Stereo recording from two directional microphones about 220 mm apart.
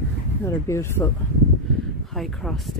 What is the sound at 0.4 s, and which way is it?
Speech, 10° left (ahead or behind).